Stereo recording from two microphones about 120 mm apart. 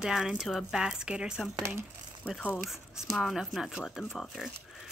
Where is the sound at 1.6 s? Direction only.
20° right (ahead or behind).